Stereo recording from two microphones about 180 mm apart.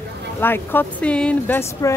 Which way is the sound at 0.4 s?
10° left (ahead or behind).